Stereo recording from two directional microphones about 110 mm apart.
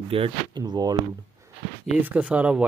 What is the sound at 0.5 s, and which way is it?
Speech, 40° right (ahead or behind).